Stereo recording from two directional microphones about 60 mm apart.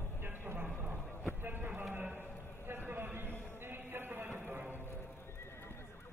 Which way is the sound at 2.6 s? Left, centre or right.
Right.